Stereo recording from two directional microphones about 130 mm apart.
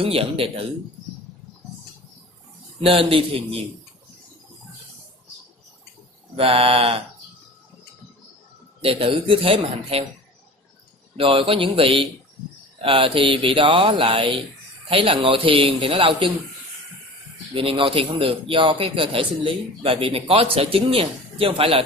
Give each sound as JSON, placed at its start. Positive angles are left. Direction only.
{"t": 0.0, "sound": "a man's voice", "side_deg": -50}
{"t": 2.8, "sound": "a man's voice", "side_deg": -45}
{"t": 6.3, "sound": "a man's voice", "side_deg": -45}
{"t": 8.8, "sound": "a man's voice", "side_deg": -40}
{"t": 11.1, "sound": "a man's voice", "side_deg": -45}
{"t": 17.6, "sound": "a man's voice", "side_deg": -40}